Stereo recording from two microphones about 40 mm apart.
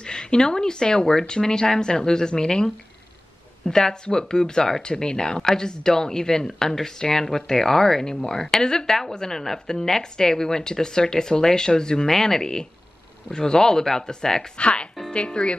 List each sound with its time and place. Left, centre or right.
0.0 s speech: centre
14.6 s speech: left